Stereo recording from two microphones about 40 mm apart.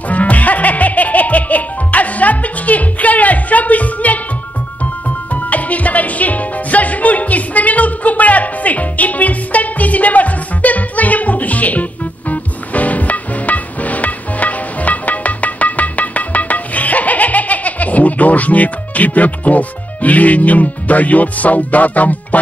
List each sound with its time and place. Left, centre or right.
0.1 s music: left